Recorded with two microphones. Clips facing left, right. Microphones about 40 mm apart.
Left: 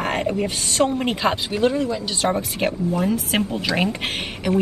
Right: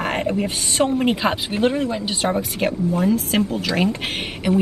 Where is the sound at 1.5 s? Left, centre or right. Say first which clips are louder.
Even; right.